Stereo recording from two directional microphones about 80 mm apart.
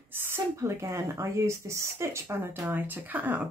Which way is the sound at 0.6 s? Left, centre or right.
Right.